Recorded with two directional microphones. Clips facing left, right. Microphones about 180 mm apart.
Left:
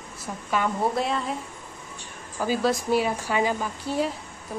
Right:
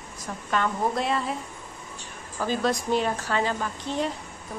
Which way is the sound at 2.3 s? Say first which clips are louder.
Left 2 dB; 10° left (ahead or behind).